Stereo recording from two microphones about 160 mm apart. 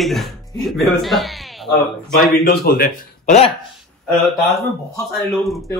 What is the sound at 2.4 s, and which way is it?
Speech, 75° left (ahead or behind).